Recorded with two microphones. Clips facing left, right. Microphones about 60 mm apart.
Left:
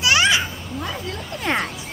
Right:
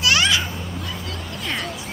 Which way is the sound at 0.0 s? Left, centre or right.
Centre.